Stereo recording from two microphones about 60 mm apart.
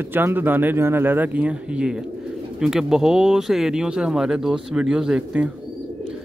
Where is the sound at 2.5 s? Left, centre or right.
Centre.